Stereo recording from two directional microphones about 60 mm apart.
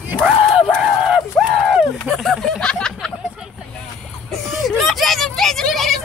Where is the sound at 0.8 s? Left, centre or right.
Centre.